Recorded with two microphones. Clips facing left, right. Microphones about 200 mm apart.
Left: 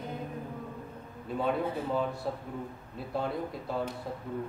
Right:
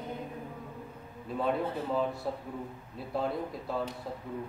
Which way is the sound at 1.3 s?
Centre (ahead or behind).